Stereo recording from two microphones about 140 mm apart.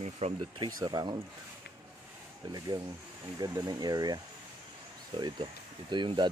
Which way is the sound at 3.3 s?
30° right (ahead or behind).